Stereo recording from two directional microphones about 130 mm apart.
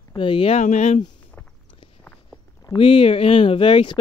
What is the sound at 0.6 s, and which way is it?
Speech, 65° left (ahead or behind).